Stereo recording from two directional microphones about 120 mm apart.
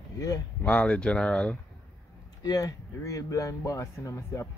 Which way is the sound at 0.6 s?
10° left (ahead or behind).